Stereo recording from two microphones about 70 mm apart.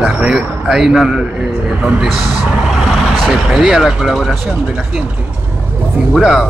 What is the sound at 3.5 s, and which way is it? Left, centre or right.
Speech, centre.